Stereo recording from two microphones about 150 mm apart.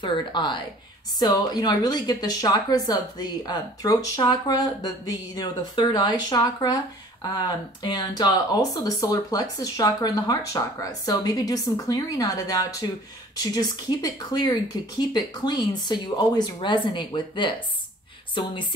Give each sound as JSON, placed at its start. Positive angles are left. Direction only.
{"t": 0.0, "sound": "speech", "side_deg": 30}